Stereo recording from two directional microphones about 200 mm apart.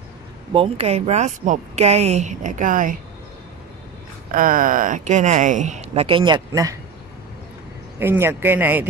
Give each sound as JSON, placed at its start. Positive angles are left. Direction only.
{"t": 0.5, "sound": "a woman's voice", "side_deg": -30}
{"t": 4.3, "sound": "a woman's voice", "side_deg": -45}
{"t": 8.0, "sound": "speech", "side_deg": -10}